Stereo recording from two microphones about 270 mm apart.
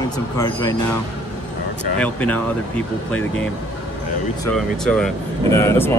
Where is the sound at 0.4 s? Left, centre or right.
Centre.